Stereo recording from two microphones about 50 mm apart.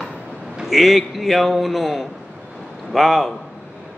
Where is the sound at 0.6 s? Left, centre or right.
Centre.